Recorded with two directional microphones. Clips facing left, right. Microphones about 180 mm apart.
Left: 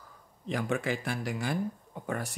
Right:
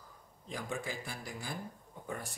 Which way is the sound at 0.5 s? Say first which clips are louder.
Left 9 dB; 75° left (ahead or behind).